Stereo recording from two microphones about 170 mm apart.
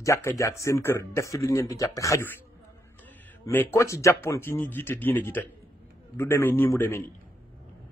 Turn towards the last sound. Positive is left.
turn(degrees=15)  # may be behind; listen again after turning